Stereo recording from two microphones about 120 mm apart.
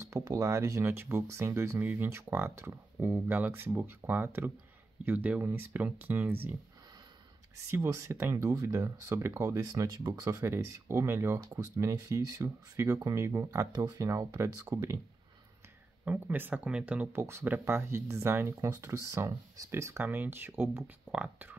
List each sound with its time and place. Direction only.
0.0 s speech: 30° right (ahead or behind)
7.7 s speech: 25° right (ahead or behind)
16.1 s speech: 15° right (ahead or behind)